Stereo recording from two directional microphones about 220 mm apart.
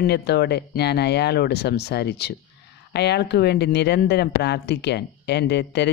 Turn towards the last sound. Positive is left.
turn(degrees=50)  # may be behind; listen again after turning